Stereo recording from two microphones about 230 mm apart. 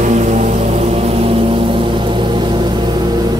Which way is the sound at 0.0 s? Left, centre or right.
Right.